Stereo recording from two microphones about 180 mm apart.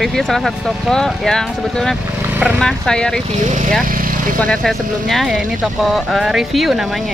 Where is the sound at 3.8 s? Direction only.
50° right (ahead or behind).